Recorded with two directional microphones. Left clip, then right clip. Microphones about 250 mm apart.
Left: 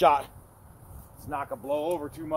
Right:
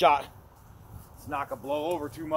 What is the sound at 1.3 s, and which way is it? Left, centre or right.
Speech, left.